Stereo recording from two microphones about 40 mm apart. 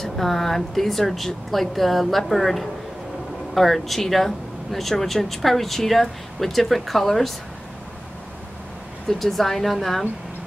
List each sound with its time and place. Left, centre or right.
0.0 s speech: centre
9.2 s speech: centre